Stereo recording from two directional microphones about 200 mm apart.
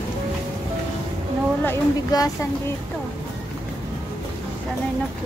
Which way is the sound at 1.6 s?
15° left (ahead or behind).